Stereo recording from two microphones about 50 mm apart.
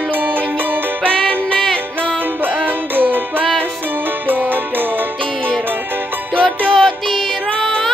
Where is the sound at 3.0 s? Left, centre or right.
Right.